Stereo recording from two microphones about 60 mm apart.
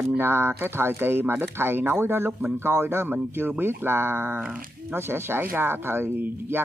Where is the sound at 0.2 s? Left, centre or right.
Right.